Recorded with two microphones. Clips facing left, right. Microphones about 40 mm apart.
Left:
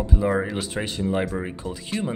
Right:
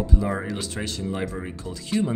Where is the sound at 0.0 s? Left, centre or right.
Centre.